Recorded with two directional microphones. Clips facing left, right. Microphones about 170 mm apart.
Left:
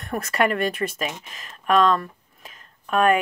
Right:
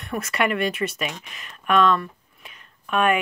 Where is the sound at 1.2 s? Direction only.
35° left (ahead or behind).